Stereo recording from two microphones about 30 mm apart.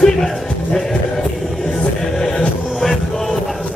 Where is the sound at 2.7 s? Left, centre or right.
Centre.